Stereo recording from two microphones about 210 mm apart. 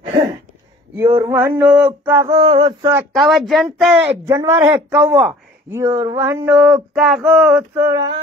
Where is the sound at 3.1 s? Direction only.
Centre (ahead or behind).